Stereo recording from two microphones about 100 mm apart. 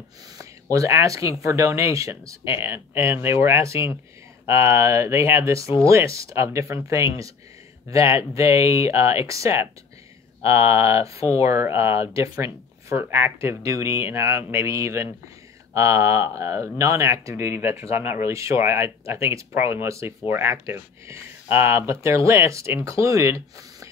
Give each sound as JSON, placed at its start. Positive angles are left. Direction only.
{"t": 0.7, "sound": "speech", "side_deg": -30}
{"t": 10.7, "sound": "speech", "side_deg": -30}